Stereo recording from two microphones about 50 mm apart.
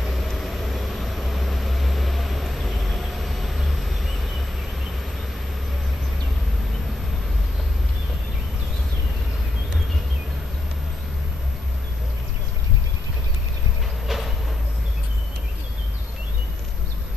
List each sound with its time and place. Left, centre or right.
0.0 s vehicle: centre
14.0 s train: centre